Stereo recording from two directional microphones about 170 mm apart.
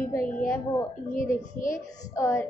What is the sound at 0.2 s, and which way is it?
A child's voice, 55° left (ahead or behind).